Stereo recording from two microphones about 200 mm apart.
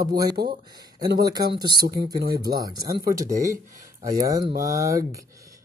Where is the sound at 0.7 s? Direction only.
20° right (ahead or behind).